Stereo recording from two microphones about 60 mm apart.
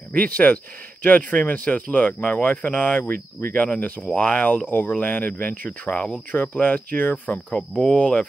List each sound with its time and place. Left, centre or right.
0.1 s speech: left
7.9 s speech: centre